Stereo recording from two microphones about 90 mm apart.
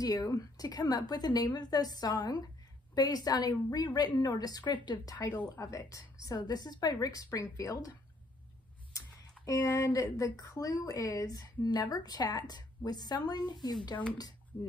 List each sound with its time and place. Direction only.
0.0 s a woman's voice: 40° left (ahead or behind)
4.7 s speech: 60° left (ahead or behind)
5.0 s a woman's voice: 45° left (ahead or behind)
9.0 s a sound: 40° left (ahead or behind)
9.4 s a woman's voice: 45° left (ahead or behind)